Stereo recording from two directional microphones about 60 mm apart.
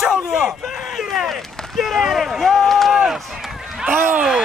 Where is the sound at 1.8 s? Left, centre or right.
Centre.